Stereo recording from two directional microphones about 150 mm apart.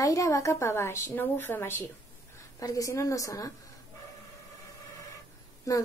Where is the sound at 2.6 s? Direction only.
20° left (ahead or behind).